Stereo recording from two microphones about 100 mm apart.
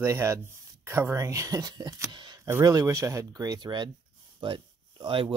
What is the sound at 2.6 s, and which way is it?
Speech, 35° right (ahead or behind).